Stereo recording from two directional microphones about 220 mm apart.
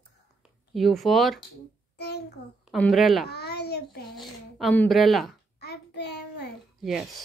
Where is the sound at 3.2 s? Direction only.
45° left (ahead or behind).